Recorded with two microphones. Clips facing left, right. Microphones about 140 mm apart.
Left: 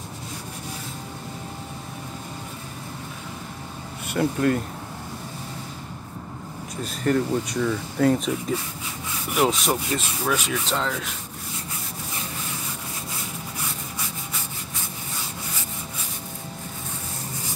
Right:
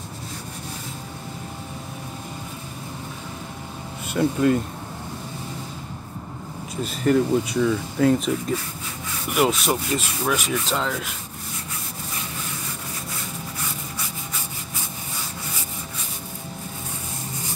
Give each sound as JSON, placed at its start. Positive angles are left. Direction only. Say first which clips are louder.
{"t": 4.1, "sound": "speech", "louder": "right 2 dB", "side_deg": 0}
{"t": 6.9, "sound": "speech", "louder": "right 3 dB", "side_deg": -5}
{"t": 9.9, "sound": "rub", "louder": "right 1 dB", "side_deg": -10}